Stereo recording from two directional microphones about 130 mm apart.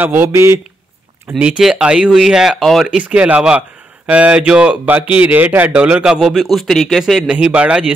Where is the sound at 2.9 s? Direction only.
10° right (ahead or behind).